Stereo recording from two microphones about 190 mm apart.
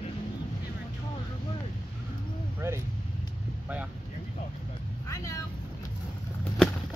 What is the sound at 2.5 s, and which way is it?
Vehicle, 15° right (ahead or behind).